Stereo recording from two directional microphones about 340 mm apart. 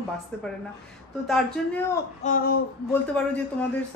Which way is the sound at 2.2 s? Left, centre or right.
Left.